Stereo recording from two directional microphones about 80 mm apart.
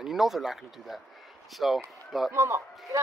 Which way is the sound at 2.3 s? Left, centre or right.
Right.